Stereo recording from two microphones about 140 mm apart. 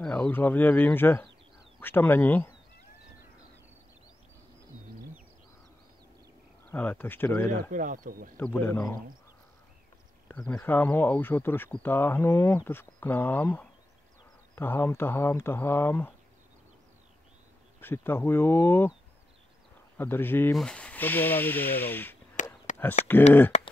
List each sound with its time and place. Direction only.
0.0 s speech: 10° left (ahead or behind)
6.7 s speech: 15° left (ahead or behind)
7.7 s speech: 70° right (ahead or behind)
8.4 s speech: 15° left (ahead or behind)
10.2 s speech: 10° left (ahead or behind)
17.7 s speech: 15° left (ahead or behind)
20.0 s speech: 15° left (ahead or behind)
22.7 s a sound: 60° left (ahead or behind)
23.1 s speech: 15° left (ahead or behind)
23.5 s a sound: 55° left (ahead or behind)